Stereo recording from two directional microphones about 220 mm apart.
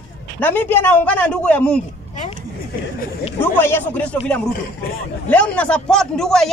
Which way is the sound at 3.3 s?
10° left (ahead or behind).